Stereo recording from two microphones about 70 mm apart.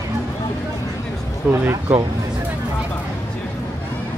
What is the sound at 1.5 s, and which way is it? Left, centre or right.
Speech, right.